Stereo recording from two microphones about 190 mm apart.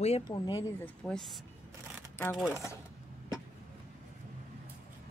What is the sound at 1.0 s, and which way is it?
Speech, centre (ahead or behind).